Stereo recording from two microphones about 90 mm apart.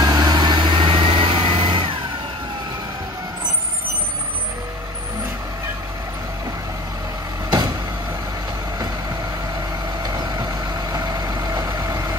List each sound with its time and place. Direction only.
0.0 s vehicle: 45° right (ahead or behind); by 2.0 s 75° right (ahead or behind)
10.0 s vehicle: 45° right (ahead or behind)